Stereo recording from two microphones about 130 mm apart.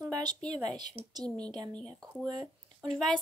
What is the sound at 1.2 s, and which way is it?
Speech, 10° left (ahead or behind).